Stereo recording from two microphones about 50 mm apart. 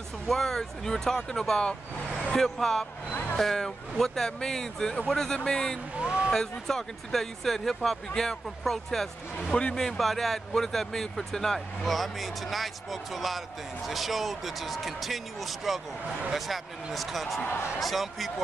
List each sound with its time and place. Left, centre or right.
0.3 s speech: centre
3.1 s music: left
3.3 s speech: centre
5.9 s a sound: centre
6.3 s speech: centre